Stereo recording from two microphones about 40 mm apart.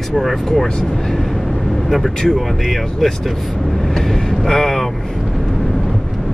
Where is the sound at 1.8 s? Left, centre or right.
Centre.